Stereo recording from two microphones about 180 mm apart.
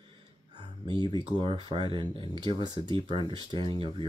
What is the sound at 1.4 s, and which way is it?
Speech, 25° right (ahead or behind).